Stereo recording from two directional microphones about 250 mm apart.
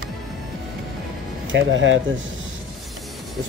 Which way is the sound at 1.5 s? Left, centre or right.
Right.